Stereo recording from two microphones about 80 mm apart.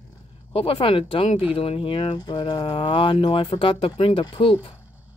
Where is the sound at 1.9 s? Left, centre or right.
Left.